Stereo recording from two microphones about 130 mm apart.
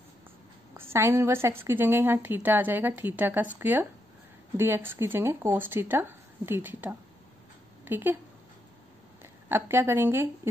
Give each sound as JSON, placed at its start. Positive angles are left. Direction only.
{"t": 0.7, "sound": "a woman's voice", "side_deg": -20}
{"t": 9.2, "sound": "speech", "side_deg": -20}